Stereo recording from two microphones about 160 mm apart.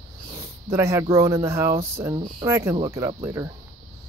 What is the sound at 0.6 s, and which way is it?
Speech, 20° right (ahead or behind).